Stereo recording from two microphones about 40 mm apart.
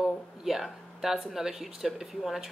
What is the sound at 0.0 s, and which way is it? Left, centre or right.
Speech, centre.